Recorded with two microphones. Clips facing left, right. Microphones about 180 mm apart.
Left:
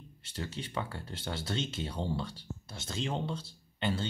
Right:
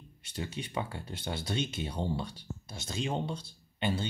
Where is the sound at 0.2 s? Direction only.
15° right (ahead or behind).